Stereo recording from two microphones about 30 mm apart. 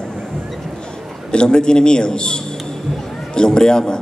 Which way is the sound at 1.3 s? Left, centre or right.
Left.